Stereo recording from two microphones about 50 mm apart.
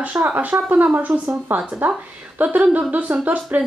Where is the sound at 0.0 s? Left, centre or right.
Right.